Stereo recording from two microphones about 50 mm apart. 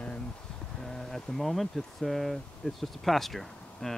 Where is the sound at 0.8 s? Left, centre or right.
Centre.